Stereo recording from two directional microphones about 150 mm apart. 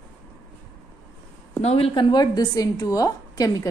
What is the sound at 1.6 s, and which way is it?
A woman's voice, 40° left (ahead or behind).